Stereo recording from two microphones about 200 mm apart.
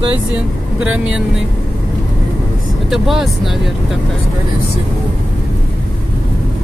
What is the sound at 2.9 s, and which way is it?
Speech, centre (ahead or behind).